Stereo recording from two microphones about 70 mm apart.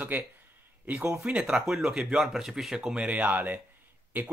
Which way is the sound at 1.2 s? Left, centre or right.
Right.